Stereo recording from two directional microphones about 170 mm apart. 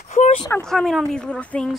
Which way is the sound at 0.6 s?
Centre (ahead or behind).